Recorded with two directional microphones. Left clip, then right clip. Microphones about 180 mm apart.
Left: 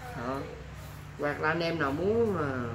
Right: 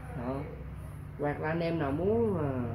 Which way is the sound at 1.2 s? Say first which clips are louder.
Left 3 dB; centre (ahead or behind).